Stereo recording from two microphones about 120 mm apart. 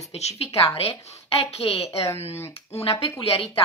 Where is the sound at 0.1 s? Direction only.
60° left (ahead or behind).